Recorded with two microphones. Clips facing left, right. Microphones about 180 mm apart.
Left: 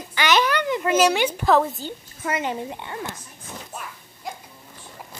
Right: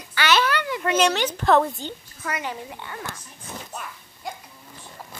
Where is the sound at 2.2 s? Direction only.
25° left (ahead or behind).